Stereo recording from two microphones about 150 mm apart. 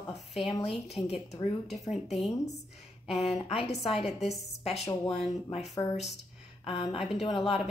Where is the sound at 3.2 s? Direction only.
45° left (ahead or behind).